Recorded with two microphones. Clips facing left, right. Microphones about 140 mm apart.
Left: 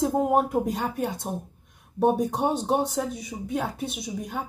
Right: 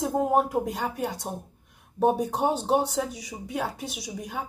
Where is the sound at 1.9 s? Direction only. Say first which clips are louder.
Left 1 dB; 5° left (ahead or behind).